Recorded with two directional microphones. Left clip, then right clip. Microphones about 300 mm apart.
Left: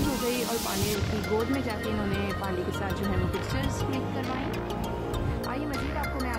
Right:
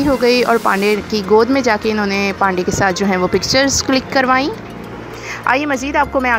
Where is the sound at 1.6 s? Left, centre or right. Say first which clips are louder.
Right 16 dB; right.